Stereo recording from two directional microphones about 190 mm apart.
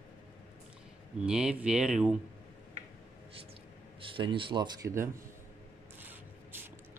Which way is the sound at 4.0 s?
25° right (ahead or behind).